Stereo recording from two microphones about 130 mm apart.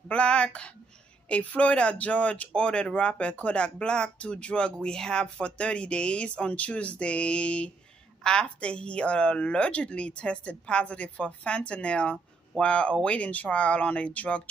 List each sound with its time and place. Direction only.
0.1 s a woman's voice: 10° left (ahead or behind)